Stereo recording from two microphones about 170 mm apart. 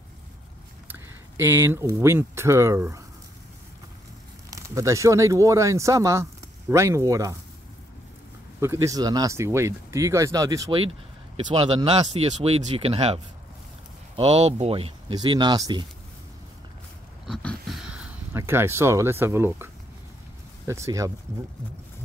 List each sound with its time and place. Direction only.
0.8 s speech: 10° right (ahead or behind)
4.5 s speech: 20° right (ahead or behind)
8.5 s speech: 15° right (ahead or behind)
12.1 s speech: 35° right (ahead or behind)
17.3 s a sound: 5° left (ahead or behind)
18.3 s speech: 15° right (ahead or behind)